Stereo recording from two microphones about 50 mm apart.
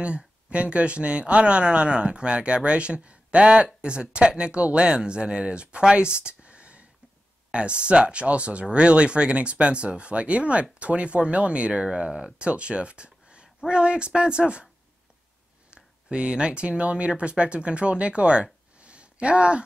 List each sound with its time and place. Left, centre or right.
0.0 s speech: right
15.7 s speech: centre